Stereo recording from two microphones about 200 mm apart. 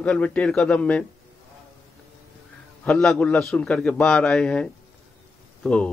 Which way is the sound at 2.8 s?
5° left (ahead or behind).